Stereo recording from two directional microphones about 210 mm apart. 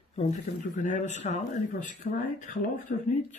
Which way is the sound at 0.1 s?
30° left (ahead or behind).